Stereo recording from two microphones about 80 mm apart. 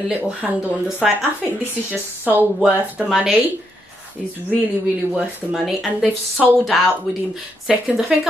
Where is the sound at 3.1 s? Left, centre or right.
Centre.